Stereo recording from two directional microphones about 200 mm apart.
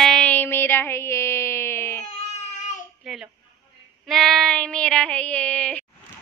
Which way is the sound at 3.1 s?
Centre (ahead or behind).